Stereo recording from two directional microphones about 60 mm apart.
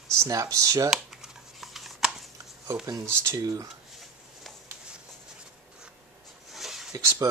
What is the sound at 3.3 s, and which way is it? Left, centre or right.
Speech, right.